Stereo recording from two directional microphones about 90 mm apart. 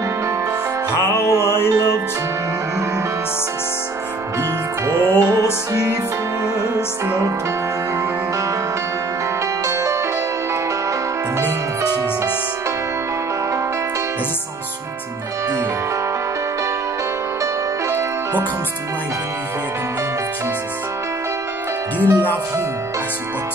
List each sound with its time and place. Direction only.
0.9 s music: 30° left (ahead or behind)
1.7 s music: 45° right (ahead or behind)
4.4 s music: 40° right (ahead or behind)
9.7 s music: 35° right (ahead or behind)
17.8 s music: 30° right (ahead or behind)
21.9 s music: 20° right (ahead or behind)